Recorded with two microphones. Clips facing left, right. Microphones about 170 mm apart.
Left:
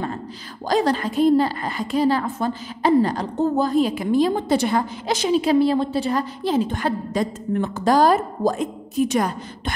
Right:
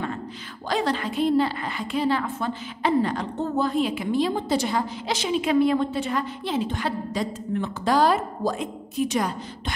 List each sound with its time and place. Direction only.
0.7 s a woman's voice: 40° left (ahead or behind)